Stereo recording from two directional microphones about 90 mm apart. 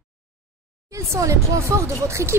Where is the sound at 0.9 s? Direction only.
35° right (ahead or behind).